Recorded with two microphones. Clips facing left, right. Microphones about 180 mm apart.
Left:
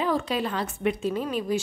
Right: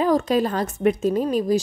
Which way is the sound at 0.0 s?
40° right (ahead or behind).